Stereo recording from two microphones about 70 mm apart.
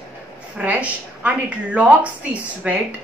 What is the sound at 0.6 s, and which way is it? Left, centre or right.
A woman's voice, right.